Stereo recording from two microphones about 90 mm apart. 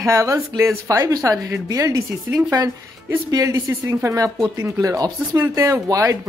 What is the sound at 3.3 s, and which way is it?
Speech, 40° right (ahead or behind).